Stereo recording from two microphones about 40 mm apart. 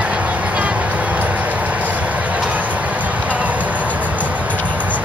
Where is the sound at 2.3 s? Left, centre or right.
Right.